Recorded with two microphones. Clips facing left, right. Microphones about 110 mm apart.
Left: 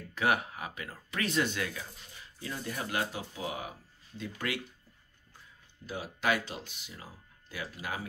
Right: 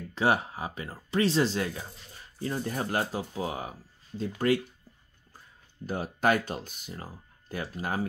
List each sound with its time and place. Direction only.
0.1 s speech: 30° right (ahead or behind)
5.9 s speech: 45° right (ahead or behind)